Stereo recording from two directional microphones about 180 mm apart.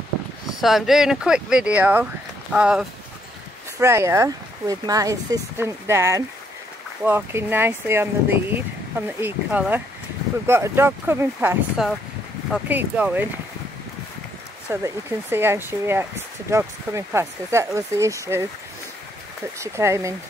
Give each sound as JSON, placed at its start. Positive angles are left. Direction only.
{"t": 0.6, "sound": "speech", "side_deg": 0}
{"t": 14.7, "sound": "speech", "side_deg": -15}
{"t": 19.6, "sound": "speech", "side_deg": -15}